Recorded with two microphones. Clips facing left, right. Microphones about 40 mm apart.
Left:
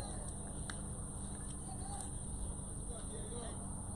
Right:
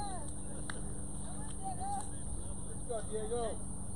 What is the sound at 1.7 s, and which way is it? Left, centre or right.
Vehicle, right.